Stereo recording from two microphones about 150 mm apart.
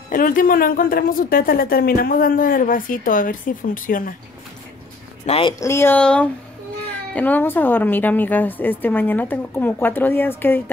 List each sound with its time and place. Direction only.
0.1 s a woman's voice: 65° left (ahead or behind)
5.2 s speech: 40° left (ahead or behind)
5.6 s a woman's voice: 15° left (ahead or behind)